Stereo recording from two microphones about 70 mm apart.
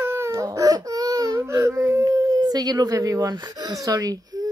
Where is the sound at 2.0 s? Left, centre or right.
Right.